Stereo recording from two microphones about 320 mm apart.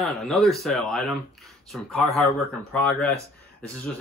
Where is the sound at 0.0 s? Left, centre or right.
Centre.